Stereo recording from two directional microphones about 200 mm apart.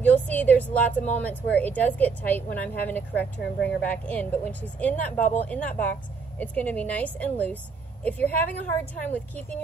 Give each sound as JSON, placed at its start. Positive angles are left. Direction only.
{"t": 0.0, "sound": "a woman's voice", "side_deg": 10}